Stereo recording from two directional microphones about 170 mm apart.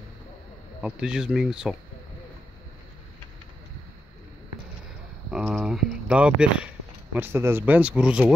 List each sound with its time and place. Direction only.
0.8 s speech: 5° right (ahead or behind)
5.3 s a sound: centre (ahead or behind)
7.2 s speech: 15° right (ahead or behind)